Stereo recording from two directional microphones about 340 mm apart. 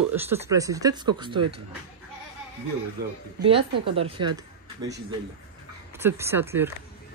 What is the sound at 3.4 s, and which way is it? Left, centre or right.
Speech, centre.